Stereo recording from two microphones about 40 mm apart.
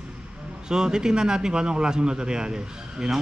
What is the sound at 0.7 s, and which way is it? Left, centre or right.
A man's voice, centre.